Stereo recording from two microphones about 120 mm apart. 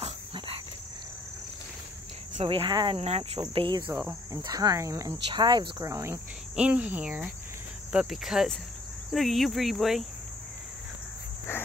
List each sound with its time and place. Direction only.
0.0 s dog: 50° right (ahead or behind)
2.4 s speech: 45° right (ahead or behind)
3.0 s cricket: 60° right (ahead or behind)
3.5 s speech: 40° right (ahead or behind)
4.3 s speech: 30° right (ahead or behind)
5.3 s speech: 40° right (ahead or behind)
6.5 s speech: 10° right (ahead or behind)
7.9 s cricket: 5° right (ahead or behind)